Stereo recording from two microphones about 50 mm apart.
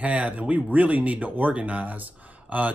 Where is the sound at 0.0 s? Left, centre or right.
Right.